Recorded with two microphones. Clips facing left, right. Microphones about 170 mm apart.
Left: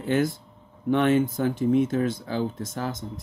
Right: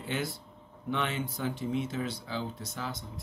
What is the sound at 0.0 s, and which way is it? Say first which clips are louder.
Speech: left 11 dB; 50° left (ahead or behind).